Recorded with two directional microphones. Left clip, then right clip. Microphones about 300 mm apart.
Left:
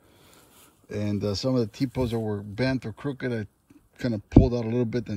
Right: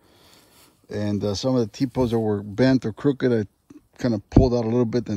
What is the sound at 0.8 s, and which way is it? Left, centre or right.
Speech, centre.